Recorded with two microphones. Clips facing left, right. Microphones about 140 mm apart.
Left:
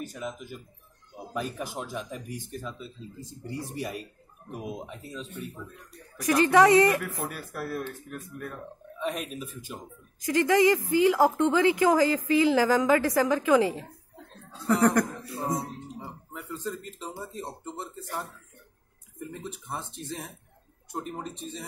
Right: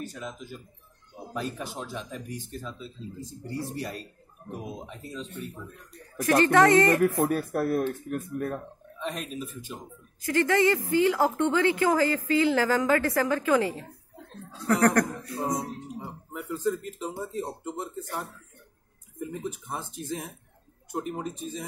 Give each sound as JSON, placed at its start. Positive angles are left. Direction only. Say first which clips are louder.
{"t": 0.0, "sound": "speech", "louder": "left 1 dB", "side_deg": 10}
{"t": 6.2, "sound": "speech", "louder": "even", "side_deg": 15}
{"t": 7.2, "sound": "speech", "louder": "right 10 dB", "side_deg": -45}
{"t": 9.0, "sound": "speech", "louder": "left 1 dB", "side_deg": 5}
{"t": 14.7, "sound": "speech", "louder": "even", "side_deg": 5}
{"t": 16.3, "sound": "a sound", "louder": "right 5 dB", "side_deg": -10}
{"t": 17.2, "sound": "speech", "louder": "right 5 dB", "side_deg": -10}
{"t": 19.7, "sound": "speech", "louder": "right 2 dB", "side_deg": -10}